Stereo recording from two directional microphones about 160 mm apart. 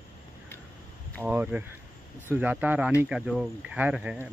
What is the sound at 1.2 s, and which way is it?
Speech, 10° right (ahead or behind).